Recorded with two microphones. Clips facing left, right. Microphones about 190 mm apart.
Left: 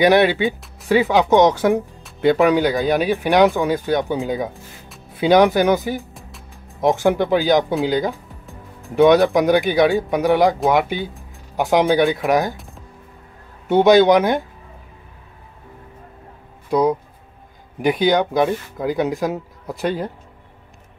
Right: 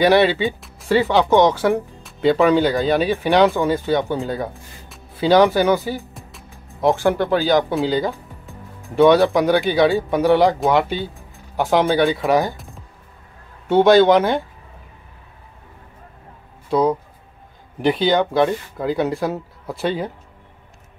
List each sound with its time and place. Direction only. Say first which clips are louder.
0.0 s speech: left 1 dB; 15° left (ahead or behind)
0.6 s music: left 1 dB; centre (ahead or behind)
0.9 s speech: left 1 dB; 10° left (ahead or behind)
6.1 s music: even; centre (ahead or behind)
6.8 s speech: left 1 dB; 15° left (ahead or behind)
12.5 s music: even; centre (ahead or behind)
13.7 s speech: even; 15° left (ahead or behind)
17.8 s speech: even; 10° left (ahead or behind)